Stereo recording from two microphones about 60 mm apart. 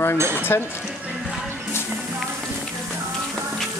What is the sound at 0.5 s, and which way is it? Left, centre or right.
Speech, left.